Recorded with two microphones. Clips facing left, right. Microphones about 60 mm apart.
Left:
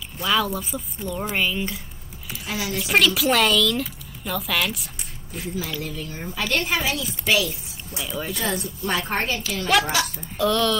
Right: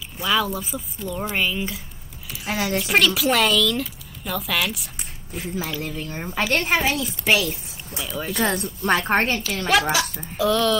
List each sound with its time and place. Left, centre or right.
0.2 s speech: centre
2.5 s a woman's voice: right
2.8 s speech: centre
5.8 s speech: right
7.9 s speech: centre
8.4 s a woman's voice: right
9.7 s speech: centre